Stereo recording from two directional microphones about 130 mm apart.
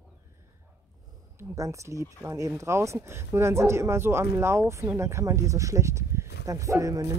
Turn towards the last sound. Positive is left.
turn(degrees=-25)  # may be behind; listen again after turning